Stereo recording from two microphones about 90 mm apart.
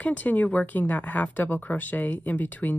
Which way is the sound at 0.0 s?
20° left (ahead or behind).